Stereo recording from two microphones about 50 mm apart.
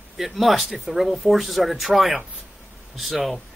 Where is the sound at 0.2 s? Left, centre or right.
Centre.